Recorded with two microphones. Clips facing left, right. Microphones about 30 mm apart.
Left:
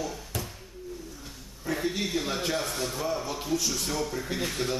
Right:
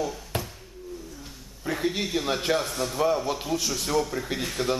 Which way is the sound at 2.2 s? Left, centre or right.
Centre.